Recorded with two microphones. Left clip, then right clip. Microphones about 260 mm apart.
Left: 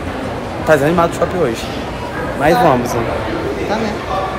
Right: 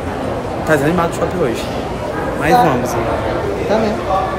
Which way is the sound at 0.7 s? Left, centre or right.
Centre.